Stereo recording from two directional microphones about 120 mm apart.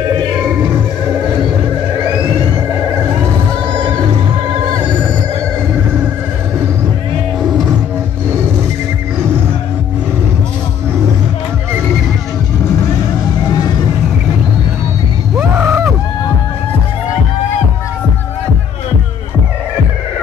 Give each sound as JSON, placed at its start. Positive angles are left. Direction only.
{"t": 15.3, "sound": "vehicle", "side_deg": -20}